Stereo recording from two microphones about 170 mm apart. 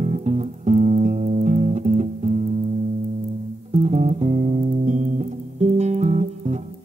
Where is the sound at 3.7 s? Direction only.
40° right (ahead or behind).